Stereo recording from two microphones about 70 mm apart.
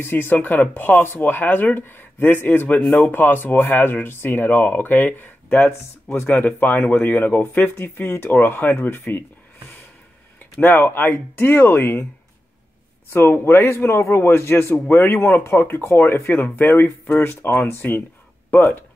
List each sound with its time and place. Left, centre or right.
0.0 s a man's voice: left
10.6 s a man's voice: left
13.1 s a man's voice: left